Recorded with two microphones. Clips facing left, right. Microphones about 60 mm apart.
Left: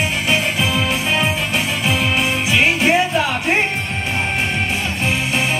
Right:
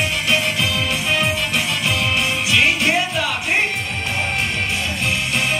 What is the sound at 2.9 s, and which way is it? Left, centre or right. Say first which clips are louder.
Music: left 4 dB; left.